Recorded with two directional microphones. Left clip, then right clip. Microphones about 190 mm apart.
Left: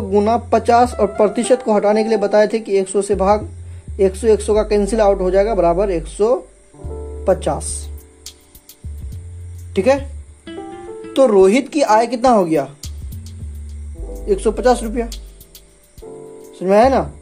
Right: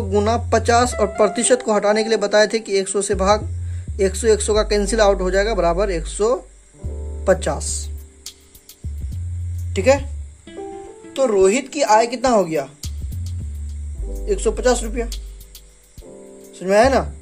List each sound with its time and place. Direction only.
0.1 s speech: 10° right (ahead or behind)
7.7 s music: centre (ahead or behind)
11.1 s speech: 25° left (ahead or behind)
11.7 s speech: 10° left (ahead or behind)
14.1 s music: centre (ahead or behind)